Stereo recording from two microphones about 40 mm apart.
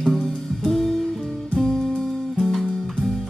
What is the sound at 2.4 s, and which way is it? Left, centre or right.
Music, centre.